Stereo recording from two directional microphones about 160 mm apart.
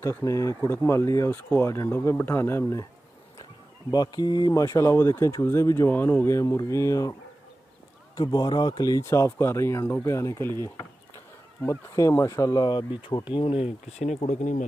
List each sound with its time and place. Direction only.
0.0 s speech: 20° left (ahead or behind)
3.9 s speech: 25° left (ahead or behind)
8.2 s speech: 25° left (ahead or behind)
11.6 s speech: 20° left (ahead or behind); by 14.6 s 50° left (ahead or behind)